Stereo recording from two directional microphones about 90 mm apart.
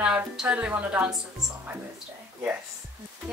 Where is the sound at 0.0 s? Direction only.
10° right (ahead or behind).